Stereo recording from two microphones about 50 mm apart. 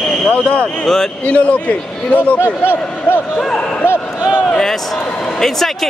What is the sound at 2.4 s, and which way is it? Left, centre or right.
Speech, left.